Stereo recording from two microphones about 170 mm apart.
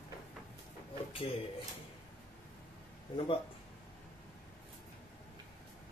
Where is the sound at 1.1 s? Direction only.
35° left (ahead or behind).